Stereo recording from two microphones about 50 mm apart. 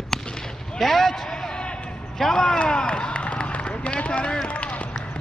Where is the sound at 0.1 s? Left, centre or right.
Centre.